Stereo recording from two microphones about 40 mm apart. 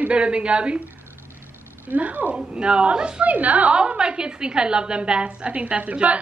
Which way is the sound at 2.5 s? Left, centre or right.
Right.